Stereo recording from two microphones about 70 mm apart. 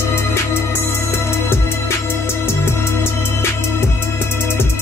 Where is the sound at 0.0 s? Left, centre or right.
Left.